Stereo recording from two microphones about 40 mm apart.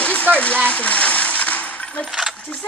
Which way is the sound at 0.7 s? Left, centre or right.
Left.